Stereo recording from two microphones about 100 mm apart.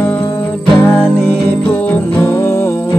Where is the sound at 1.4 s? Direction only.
20° left (ahead or behind).